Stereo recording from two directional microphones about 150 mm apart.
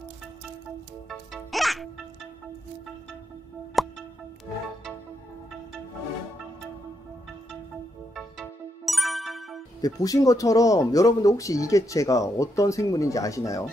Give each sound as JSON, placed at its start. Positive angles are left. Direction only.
{"t": 1.0, "sound": "music", "side_deg": 0}
{"t": 3.8, "sound": "music", "side_deg": 0}
{"t": 8.1, "sound": "music", "side_deg": 0}
{"t": 9.8, "sound": "speech", "side_deg": 25}